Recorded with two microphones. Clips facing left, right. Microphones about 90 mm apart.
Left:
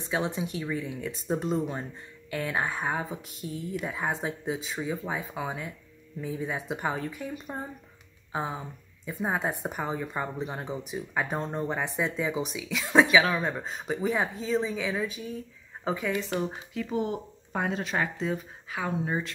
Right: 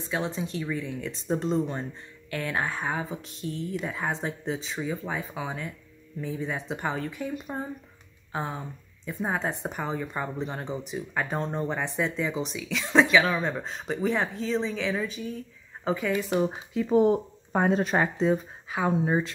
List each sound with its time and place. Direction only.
0.0 s speech: 15° left (ahead or behind)
16.3 s speech: 15° right (ahead or behind)
16.8 s speech: 35° right (ahead or behind)